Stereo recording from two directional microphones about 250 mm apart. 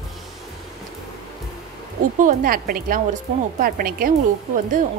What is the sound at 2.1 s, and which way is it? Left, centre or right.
Speech, right.